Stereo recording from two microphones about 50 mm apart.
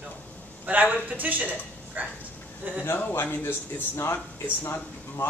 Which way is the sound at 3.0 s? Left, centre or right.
Left.